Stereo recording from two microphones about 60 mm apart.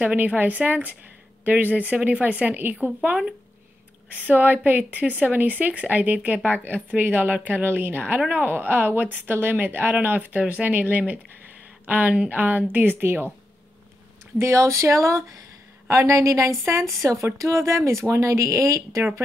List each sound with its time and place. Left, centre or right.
0.0 s speech: right
4.3 s speech: right
14.4 s a woman's voice: right
15.9 s a woman's voice: right